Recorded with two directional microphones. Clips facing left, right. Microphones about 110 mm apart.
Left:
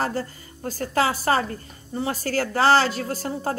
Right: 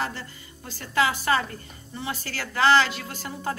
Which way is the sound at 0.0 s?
40° left (ahead or behind).